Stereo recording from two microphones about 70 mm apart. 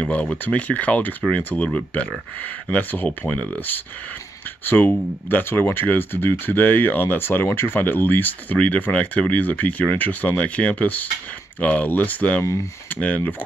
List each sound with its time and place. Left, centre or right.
0.0 s speech: centre